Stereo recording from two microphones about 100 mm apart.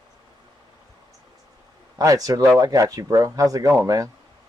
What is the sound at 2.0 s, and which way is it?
Speech, 35° right (ahead or behind).